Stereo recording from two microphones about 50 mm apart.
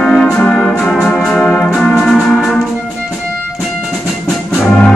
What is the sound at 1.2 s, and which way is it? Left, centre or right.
Organ, left.